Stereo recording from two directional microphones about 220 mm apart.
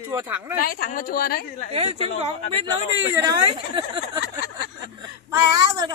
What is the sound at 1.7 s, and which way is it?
Speech, 30° right (ahead or behind).